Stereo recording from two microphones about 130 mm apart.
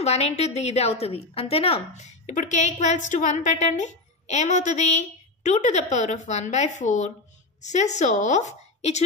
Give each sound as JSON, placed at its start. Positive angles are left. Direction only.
{"t": 0.0, "sound": "a woman's voice", "side_deg": 55}